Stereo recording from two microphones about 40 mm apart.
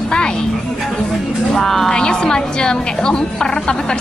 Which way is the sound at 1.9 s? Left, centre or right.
Left.